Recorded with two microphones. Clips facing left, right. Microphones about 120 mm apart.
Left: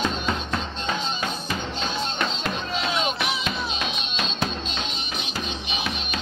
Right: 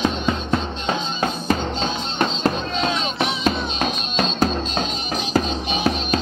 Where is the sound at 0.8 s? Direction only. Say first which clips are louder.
Right 5 dB; 40° right (ahead or behind).